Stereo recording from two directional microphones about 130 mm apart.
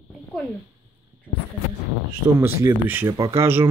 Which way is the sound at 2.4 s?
20° right (ahead or behind).